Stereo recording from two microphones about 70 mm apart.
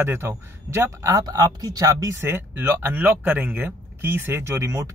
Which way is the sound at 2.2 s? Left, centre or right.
Right.